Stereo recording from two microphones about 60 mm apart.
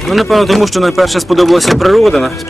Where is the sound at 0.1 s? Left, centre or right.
Centre.